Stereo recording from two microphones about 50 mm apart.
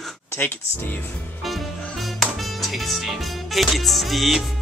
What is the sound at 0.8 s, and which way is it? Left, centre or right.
Music, left.